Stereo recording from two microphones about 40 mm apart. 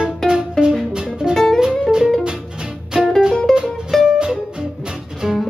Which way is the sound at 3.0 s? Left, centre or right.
Centre.